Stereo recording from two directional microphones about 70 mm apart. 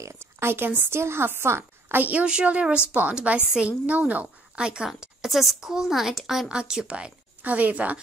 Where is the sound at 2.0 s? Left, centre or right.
Centre.